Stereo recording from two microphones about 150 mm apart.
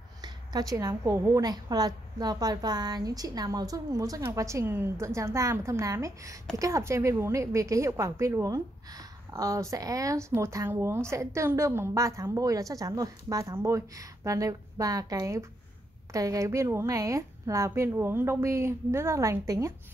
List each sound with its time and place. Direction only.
0.2 s a woman's voice: 25° right (ahead or behind)